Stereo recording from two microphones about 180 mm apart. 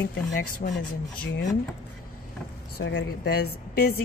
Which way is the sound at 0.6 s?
45° left (ahead or behind).